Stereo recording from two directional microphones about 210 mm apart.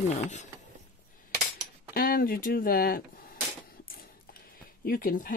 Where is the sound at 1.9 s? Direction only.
45° left (ahead or behind).